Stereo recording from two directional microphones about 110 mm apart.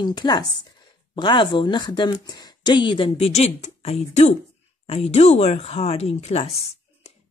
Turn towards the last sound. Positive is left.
turn(degrees=75)  # may be behind; listen again after turning